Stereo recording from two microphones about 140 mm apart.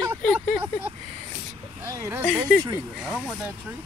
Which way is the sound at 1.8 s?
20° right (ahead or behind).